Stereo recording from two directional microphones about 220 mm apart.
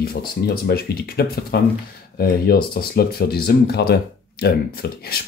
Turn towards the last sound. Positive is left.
turn(degrees=45)  # may be behind; listen again after turning